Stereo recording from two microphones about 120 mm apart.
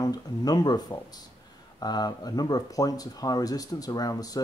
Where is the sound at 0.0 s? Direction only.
35° left (ahead or behind).